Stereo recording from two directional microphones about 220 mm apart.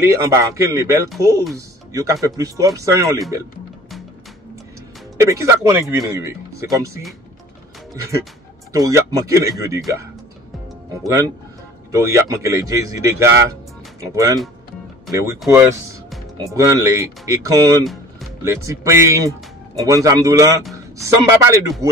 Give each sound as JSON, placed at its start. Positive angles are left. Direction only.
{"t": 0.0, "sound": "speech", "side_deg": -10}
{"t": 5.1, "sound": "speech", "side_deg": -15}
{"t": 8.7, "sound": "speech", "side_deg": -15}
{"t": 10.9, "sound": "speech", "side_deg": -15}